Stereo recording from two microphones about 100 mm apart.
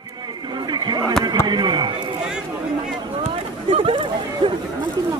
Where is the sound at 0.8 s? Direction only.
45° right (ahead or behind).